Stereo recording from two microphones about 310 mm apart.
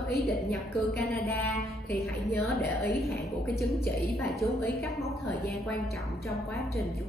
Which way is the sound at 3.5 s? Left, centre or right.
Centre.